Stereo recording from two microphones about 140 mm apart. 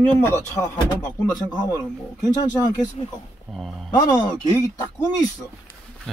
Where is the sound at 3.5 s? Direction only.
Centre (ahead or behind).